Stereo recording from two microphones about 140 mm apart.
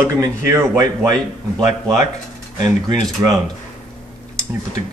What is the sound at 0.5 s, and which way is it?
Speech, 20° right (ahead or behind).